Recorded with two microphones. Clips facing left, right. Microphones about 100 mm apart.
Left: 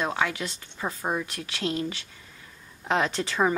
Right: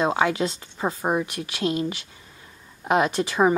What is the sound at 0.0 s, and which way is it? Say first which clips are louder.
Speech: right 6 dB; 25° right (ahead or behind).